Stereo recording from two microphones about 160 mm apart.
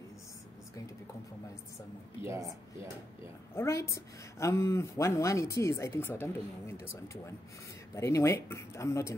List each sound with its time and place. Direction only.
2.2 s speech: 20° right (ahead or behind)
3.5 s a woman's voice: 15° left (ahead or behind)
7.9 s speech: 20° left (ahead or behind)